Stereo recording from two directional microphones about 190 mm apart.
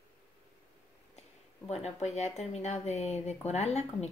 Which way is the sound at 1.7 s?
35° left (ahead or behind).